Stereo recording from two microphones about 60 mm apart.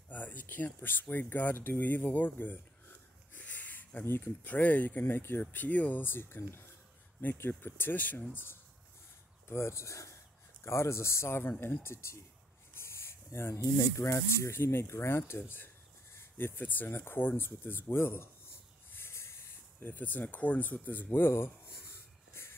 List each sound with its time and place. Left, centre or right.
0.1 s a sound: left
0.7 s speech: left
3.3 s a sound: left
4.0 s speech: left
9.5 s speech: left
12.7 s rub: left
14.0 s speech: left
18.9 s hiss: left
19.8 s speech: left
22.3 s a sound: left